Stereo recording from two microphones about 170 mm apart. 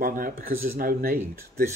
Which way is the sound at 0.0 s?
55° right (ahead or behind).